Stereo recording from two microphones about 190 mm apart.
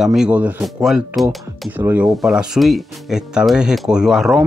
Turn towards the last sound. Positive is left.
turn(degrees=0)  # may be behind; listen again after turning